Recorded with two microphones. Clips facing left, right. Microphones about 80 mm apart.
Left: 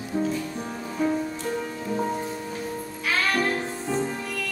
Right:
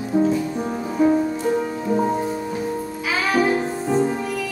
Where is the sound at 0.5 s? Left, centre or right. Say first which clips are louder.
Right 8 dB; right.